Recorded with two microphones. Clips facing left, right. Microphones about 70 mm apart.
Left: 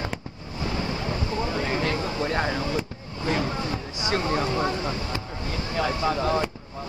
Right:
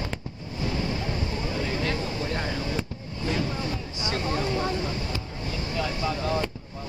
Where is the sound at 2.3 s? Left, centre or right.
Left.